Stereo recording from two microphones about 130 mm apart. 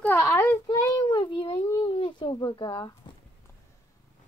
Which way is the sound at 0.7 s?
30° left (ahead or behind).